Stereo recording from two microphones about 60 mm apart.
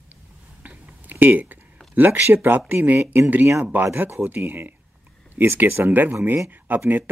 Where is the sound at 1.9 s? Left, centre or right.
Right.